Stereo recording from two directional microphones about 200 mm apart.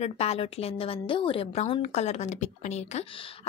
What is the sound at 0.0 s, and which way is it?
A woman's voice, 30° left (ahead or behind).